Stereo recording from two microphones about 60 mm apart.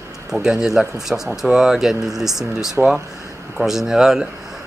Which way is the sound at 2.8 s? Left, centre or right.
Right.